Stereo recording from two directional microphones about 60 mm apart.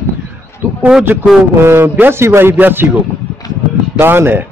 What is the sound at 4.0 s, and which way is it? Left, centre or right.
Speech, right.